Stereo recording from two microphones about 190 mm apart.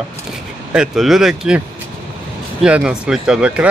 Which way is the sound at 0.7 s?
5° right (ahead or behind).